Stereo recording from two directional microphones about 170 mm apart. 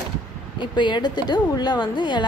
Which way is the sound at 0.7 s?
25° left (ahead or behind).